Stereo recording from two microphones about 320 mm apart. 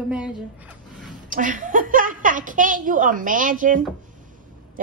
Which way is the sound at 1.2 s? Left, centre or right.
Right.